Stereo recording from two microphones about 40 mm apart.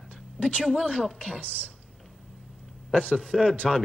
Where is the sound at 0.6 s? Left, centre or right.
Left.